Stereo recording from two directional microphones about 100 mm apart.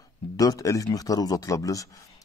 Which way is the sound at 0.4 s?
35° left (ahead or behind).